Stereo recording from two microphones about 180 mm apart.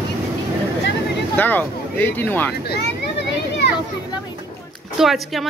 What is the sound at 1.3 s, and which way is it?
Speech, 10° left (ahead or behind).